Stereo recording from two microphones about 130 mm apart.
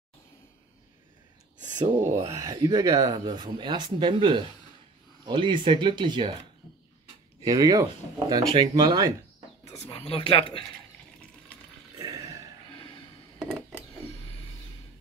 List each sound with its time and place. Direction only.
2.0 s speech: 20° right (ahead or behind); by 6.3 s 40° right (ahead or behind)
7.4 s speech: 30° right (ahead or behind)
9.8 s speech: 45° left (ahead or behind)
12.0 s a sound: 25° right (ahead or behind)
13.4 s cutlery: 5° left (ahead or behind)